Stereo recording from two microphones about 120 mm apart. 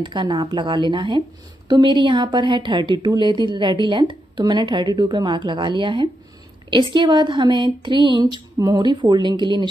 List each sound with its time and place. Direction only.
0.0 s speech: 40° right (ahead or behind)